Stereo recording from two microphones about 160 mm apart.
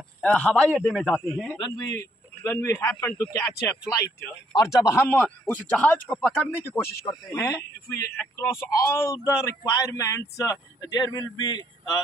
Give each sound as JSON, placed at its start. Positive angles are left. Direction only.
{"t": 0.2, "sound": "a man's voice", "side_deg": 5}
{"t": 1.6, "sound": "speech", "side_deg": 25}
{"t": 7.1, "sound": "speech", "side_deg": 20}